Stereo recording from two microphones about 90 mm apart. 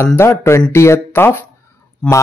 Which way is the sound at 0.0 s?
30° left (ahead or behind).